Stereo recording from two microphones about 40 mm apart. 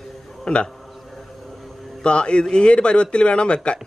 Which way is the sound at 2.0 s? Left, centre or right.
Left.